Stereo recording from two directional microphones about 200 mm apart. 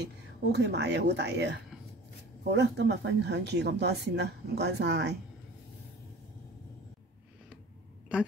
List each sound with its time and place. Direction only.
0.0 s speech: 60° right (ahead or behind)